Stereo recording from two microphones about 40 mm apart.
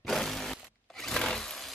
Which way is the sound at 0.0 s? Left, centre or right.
Centre.